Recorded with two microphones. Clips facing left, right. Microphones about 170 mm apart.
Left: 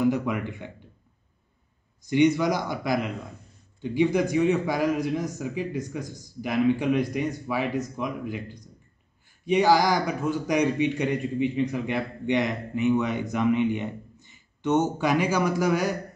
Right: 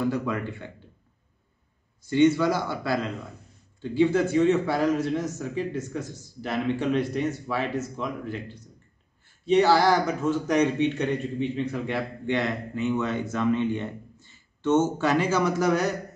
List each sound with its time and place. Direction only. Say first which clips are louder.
0.0 s speech: left 2 dB; 15° left (ahead or behind)
2.0 s speech: right 1 dB; 15° left (ahead or behind)